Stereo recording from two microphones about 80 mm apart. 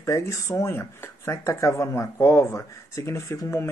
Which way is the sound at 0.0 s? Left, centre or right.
Left.